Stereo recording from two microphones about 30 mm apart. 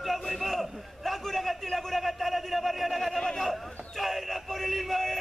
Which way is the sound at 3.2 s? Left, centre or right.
Centre.